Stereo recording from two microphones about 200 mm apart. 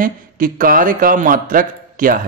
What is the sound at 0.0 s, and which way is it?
A man's voice, 45° right (ahead or behind).